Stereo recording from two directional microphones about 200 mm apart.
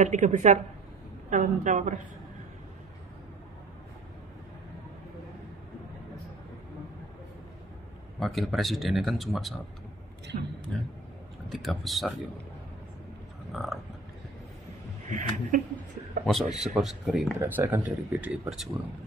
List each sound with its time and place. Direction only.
0.0 s a woman's voice: 40° right (ahead or behind)
8.2 s speech: centre (ahead or behind)
10.3 s a man's voice: 45° right (ahead or behind)
11.5 s speech: centre (ahead or behind)
13.5 s a sound: centre (ahead or behind)
15.0 s a woman's voice: 40° right (ahead or behind)
16.3 s speech: centre (ahead or behind)